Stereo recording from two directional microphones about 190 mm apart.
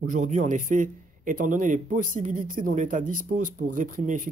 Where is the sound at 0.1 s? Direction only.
40° right (ahead or behind).